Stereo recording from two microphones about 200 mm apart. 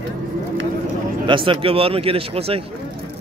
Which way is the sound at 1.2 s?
25° right (ahead or behind).